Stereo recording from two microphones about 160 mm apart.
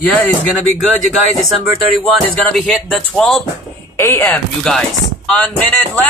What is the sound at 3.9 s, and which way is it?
Speech, 15° left (ahead or behind).